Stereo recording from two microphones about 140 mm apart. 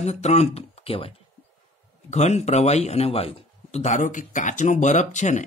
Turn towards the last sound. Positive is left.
turn(degrees=60)  # may be behind; listen again after turning